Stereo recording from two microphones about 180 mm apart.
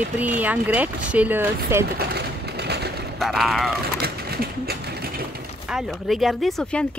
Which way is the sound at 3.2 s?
Centre (ahead or behind).